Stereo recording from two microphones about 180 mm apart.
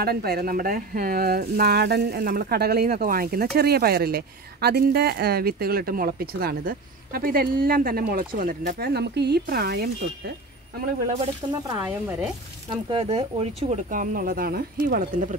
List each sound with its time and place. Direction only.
0.0 s speech: 60° right (ahead or behind)
11.6 s speech: 15° right (ahead or behind)
12.9 s speech: 35° right (ahead or behind); by 15.2 s 50° right (ahead or behind)